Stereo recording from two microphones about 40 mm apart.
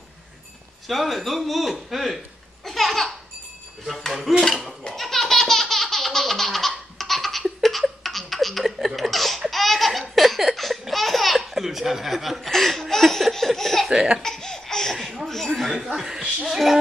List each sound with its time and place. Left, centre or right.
0.8 s a man's voice: centre
2.6 s a sound: centre
4.1 s a man's voice: centre
4.9 s laughter: centre
12.4 s speech: centre
12.9 s laughter: centre
13.8 s laughter: right
14.2 s laughter: centre
15.0 s laughter: centre
16.4 s a man's voice: centre